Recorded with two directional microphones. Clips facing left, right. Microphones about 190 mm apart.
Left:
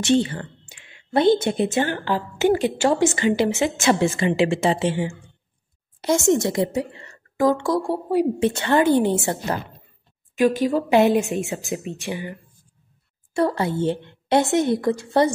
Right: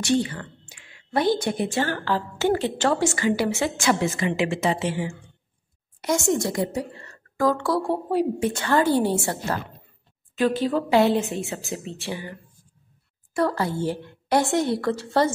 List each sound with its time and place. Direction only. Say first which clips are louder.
0.0 s a woman's voice: left 3 dB; 25° left (ahead or behind)
8.4 s a woman's voice: left 3 dB; 25° left (ahead or behind)